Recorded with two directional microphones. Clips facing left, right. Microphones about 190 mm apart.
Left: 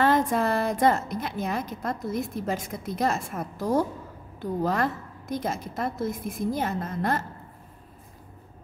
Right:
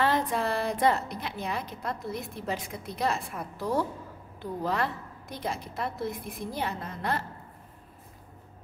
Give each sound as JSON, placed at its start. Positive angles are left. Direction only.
{"t": 0.0, "sound": "a woman's voice", "side_deg": 45}